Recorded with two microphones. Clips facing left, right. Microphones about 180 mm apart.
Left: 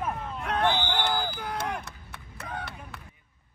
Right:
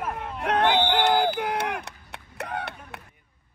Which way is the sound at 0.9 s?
65° right (ahead or behind).